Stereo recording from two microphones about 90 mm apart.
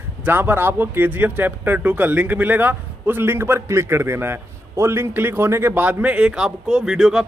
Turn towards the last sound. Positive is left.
turn(degrees=-5)  # may be behind; listen again after turning